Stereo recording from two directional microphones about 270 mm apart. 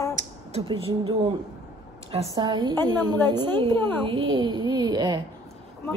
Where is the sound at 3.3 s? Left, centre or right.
Centre.